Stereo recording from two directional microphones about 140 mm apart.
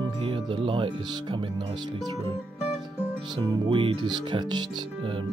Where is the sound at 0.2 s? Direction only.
40° right (ahead or behind).